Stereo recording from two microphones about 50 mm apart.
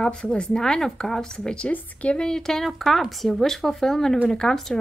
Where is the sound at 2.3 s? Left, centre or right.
Centre.